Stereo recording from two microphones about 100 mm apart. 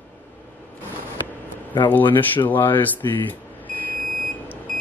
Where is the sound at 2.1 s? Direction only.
20° left (ahead or behind).